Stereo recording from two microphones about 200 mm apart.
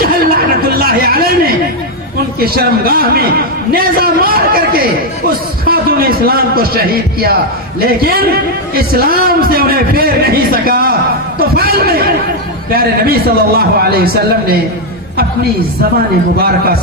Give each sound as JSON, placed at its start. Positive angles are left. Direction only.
{"t": 0.0, "sound": "a sound", "side_deg": -50}
{"t": 0.7, "sound": "a man's voice", "side_deg": -50}
{"t": 16.3, "sound": "a man's voice", "side_deg": -50}